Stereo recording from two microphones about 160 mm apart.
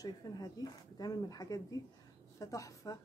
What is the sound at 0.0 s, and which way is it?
A woman's voice, 25° left (ahead or behind).